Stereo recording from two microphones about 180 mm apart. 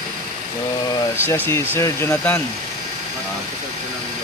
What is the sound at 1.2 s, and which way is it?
Speech, 10° left (ahead or behind).